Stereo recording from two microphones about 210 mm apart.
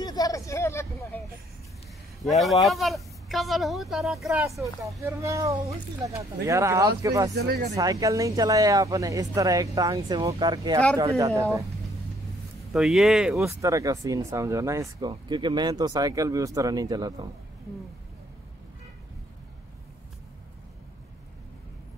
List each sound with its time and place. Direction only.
0.0 s a sound: 15° left (ahead or behind)
2.2 s speech: centre (ahead or behind)
5.0 s speech: 15° right (ahead or behind)
7.3 s speech: 50° right (ahead or behind)
7.7 s speech: 15° right (ahead or behind)
12.7 s speech: centre (ahead or behind)
13.6 s speech: 15° right (ahead or behind)